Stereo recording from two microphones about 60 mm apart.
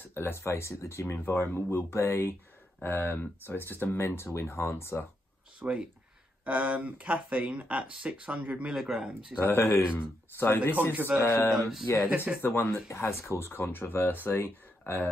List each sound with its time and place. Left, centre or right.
0.1 s speech: left
5.6 s speech: right
9.4 s speech: left
10.8 s speech: right
11.9 s speech: left